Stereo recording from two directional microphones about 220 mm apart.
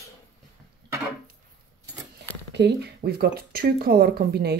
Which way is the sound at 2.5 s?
50° right (ahead or behind).